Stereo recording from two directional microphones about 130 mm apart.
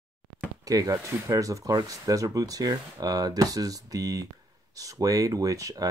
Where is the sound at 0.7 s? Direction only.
25° right (ahead or behind).